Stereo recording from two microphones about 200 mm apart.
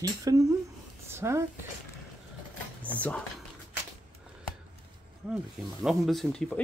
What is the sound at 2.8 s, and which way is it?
Speech, 5° left (ahead or behind).